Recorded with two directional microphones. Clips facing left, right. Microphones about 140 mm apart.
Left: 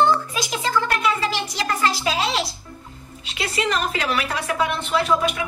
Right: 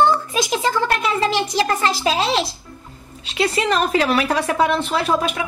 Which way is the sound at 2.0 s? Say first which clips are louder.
Right 4 dB; 25° right (ahead or behind).